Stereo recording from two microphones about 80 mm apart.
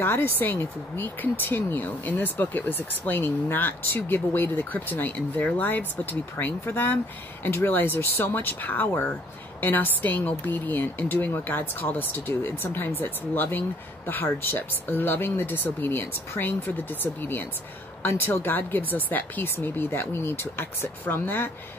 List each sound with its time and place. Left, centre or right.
0.0 s speech: left